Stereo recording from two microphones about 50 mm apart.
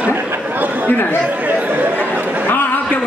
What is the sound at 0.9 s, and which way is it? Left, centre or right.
Speech, left.